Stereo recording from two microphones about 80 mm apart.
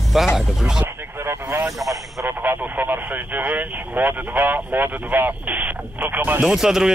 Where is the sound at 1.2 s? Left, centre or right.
Right.